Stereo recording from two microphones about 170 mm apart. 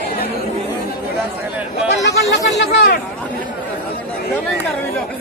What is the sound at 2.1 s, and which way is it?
Chatter, 85° left.